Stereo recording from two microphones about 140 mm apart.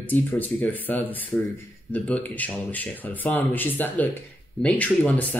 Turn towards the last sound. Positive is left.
turn(degrees=10)  # may be behind; listen again after turning